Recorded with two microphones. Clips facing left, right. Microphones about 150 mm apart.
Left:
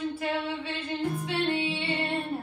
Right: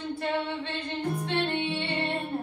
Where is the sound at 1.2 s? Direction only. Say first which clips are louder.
Even; 5° left (ahead or behind).